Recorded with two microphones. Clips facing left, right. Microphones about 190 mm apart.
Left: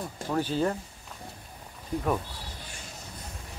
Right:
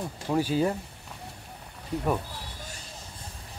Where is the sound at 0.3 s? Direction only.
10° right (ahead or behind).